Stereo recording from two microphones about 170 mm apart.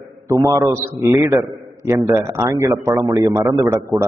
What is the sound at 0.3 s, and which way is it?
A man's voice, 20° right (ahead or behind).